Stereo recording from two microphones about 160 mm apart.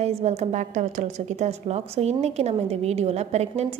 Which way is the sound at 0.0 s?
40° right (ahead or behind).